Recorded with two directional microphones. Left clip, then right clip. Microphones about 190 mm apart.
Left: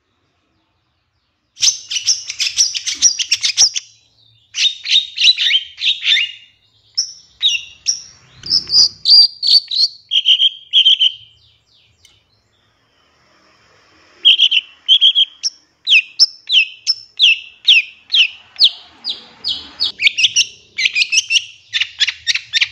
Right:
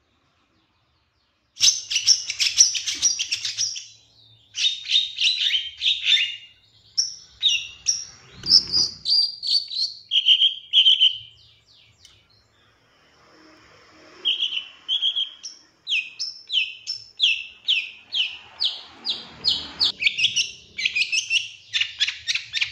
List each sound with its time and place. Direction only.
1.5 s chirp: 15° left (ahead or behind)
2.8 s chirp: 40° left (ahead or behind)
4.5 s bird: 40° left (ahead or behind)
7.3 s chirp: 35° left (ahead or behind)
8.6 s cricket: 30° left (ahead or behind)
14.2 s chirp: 45° left (ahead or behind)
19.0 s bird: 20° left (ahead or behind)
20.2 s bird: 30° left (ahead or behind)